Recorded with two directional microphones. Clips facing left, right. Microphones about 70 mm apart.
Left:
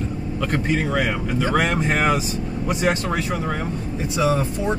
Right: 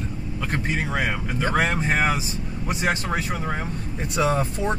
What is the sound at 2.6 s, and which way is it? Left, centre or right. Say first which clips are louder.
Speech: left 3 dB; right.